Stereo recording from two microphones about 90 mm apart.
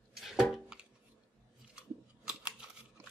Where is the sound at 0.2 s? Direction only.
5° right (ahead or behind).